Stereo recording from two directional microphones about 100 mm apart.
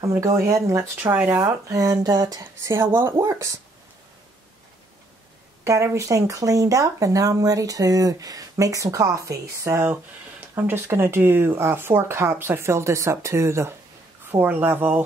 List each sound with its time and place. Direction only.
0.0 s speech: 30° right (ahead or behind)
1.1 s speech: 15° right (ahead or behind)
1.4 s speech: 30° right (ahead or behind)
2.7 s speech: 25° right (ahead or behind)
5.6 s speech: 30° right (ahead or behind)